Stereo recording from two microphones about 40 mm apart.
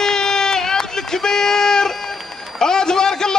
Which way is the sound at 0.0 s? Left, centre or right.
Centre.